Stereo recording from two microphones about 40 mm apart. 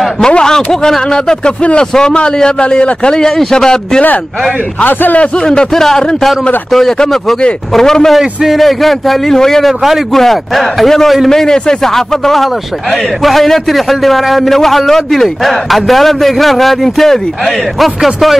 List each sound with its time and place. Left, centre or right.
0.2 s a man's voice: centre
1.6 s a man's voice: left
2.0 s a man's voice: centre
4.8 s a man's voice: left
5.4 s a man's voice: left
8.2 s a man's voice: centre
8.5 s a man's voice: centre